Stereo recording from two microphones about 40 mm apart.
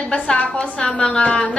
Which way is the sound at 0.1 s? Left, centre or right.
Left.